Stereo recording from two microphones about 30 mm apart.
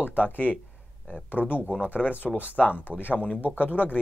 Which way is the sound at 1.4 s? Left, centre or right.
Left.